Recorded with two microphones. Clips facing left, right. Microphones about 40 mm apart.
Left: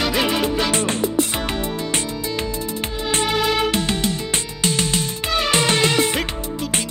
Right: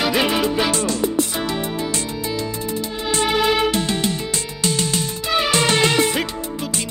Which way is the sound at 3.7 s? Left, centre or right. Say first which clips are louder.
Even; left.